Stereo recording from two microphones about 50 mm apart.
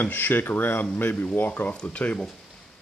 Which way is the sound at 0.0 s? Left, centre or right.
Left.